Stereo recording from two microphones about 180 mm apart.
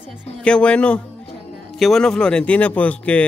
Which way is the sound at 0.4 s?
5° left (ahead or behind).